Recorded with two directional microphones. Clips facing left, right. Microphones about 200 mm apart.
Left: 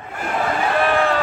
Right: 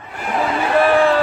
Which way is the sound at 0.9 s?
35° right (ahead or behind).